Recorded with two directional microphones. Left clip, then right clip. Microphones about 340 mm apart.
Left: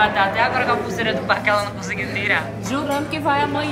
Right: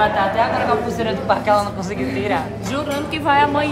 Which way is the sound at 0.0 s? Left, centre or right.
Centre.